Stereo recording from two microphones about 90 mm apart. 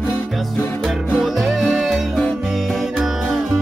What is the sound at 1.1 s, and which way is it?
Music, 5° right (ahead or behind).